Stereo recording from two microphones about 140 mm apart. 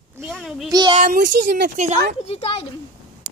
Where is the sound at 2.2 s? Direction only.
45° left (ahead or behind).